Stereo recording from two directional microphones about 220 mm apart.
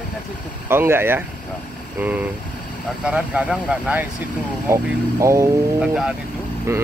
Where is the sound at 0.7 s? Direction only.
10° right (ahead or behind).